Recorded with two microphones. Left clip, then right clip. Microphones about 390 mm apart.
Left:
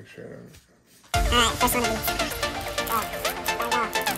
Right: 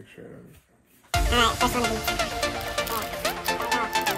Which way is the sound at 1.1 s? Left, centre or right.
Centre.